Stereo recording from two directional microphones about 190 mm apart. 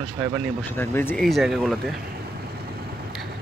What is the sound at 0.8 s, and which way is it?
Speech, 10° left (ahead or behind).